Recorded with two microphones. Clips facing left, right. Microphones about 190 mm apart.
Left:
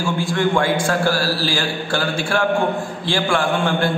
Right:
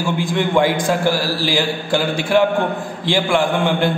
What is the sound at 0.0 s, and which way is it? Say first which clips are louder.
A man's voice: even; 15° right (ahead or behind).